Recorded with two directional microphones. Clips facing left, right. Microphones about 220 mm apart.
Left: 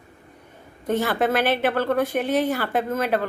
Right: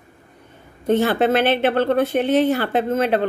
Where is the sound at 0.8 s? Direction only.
25° right (ahead or behind).